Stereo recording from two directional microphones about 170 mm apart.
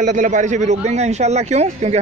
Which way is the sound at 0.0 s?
45° right (ahead or behind).